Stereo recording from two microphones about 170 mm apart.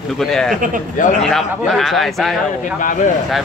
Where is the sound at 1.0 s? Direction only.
50° left (ahead or behind).